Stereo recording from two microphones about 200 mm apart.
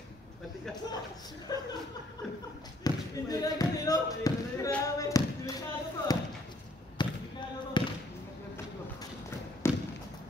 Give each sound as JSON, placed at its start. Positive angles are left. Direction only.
{"t": 1.5, "sound": "speech", "side_deg": 20}
{"t": 2.8, "sound": "basketball bounce", "side_deg": 20}
{"t": 9.6, "sound": "a sound", "side_deg": 10}